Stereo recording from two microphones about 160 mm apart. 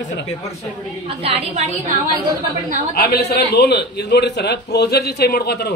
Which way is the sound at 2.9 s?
85° left.